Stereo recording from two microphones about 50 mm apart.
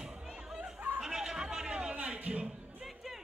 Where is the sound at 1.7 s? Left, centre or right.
Centre.